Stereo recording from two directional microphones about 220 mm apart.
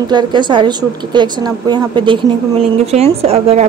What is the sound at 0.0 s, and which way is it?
Speech, 20° right (ahead or behind).